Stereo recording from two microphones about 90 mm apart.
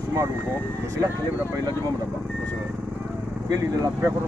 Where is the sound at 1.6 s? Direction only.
45° right (ahead or behind).